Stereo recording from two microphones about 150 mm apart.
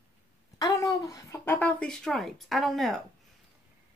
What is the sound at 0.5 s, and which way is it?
A woman's voice, 25° left (ahead or behind).